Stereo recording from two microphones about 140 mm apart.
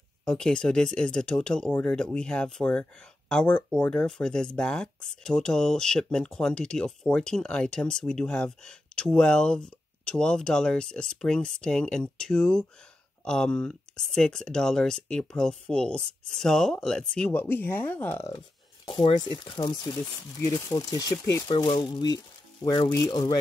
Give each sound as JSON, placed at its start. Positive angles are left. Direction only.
{"t": 0.2, "sound": "speech", "side_deg": 5}
{"t": 18.9, "sound": "speech", "side_deg": 40}
{"t": 19.1, "sound": "speech", "side_deg": 30}
{"t": 21.5, "sound": "speech", "side_deg": 35}